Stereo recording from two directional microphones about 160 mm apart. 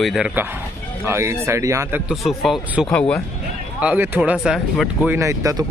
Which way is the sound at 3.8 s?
10° right (ahead or behind).